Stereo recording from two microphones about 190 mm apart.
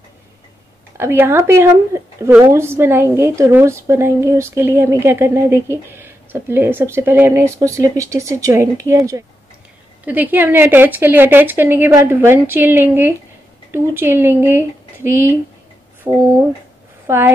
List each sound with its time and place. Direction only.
0.9 s a woman's voice: 10° right (ahead or behind)